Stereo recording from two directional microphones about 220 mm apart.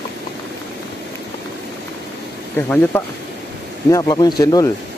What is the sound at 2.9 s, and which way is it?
Speech, 10° left (ahead or behind).